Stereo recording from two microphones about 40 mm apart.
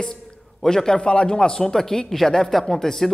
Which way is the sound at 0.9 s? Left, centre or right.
Left.